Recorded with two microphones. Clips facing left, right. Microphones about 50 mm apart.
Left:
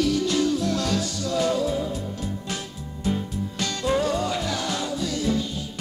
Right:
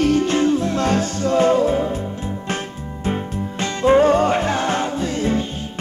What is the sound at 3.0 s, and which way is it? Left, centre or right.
Music, right.